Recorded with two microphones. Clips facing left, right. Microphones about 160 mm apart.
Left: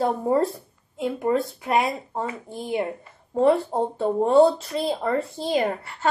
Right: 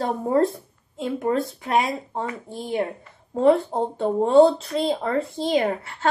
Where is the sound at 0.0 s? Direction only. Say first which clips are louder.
Even; centre (ahead or behind).